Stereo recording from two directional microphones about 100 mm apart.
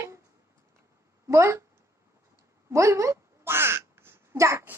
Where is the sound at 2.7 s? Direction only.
30° right (ahead or behind).